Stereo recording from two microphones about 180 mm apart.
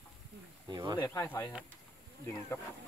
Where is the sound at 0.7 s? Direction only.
25° right (ahead or behind).